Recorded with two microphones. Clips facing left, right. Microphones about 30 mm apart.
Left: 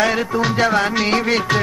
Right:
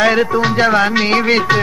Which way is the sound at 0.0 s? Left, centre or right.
Centre.